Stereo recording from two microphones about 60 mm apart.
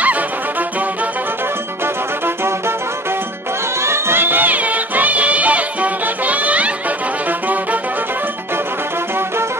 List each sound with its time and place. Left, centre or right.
0.0 s music: right
3.8 s music: right